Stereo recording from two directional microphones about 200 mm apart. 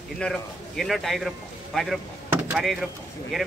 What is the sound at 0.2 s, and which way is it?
A man's voice, centre (ahead or behind).